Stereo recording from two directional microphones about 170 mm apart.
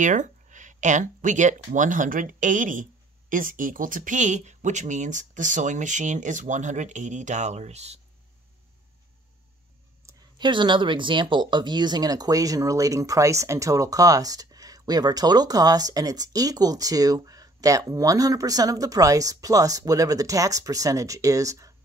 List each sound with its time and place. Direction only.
0.0 s speech: 45° right (ahead or behind)
10.0 s speech: 25° right (ahead or behind)